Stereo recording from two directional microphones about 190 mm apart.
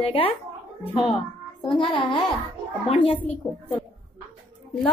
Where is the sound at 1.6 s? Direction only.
25° left (ahead or behind).